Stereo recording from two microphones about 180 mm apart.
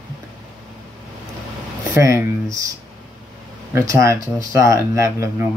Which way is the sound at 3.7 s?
15° right (ahead or behind).